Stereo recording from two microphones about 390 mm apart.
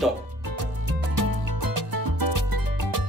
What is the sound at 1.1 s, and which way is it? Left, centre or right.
Music, right.